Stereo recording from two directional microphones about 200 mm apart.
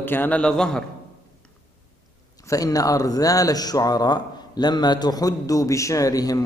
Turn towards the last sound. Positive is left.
turn(degrees=15)  # may be behind; listen again after turning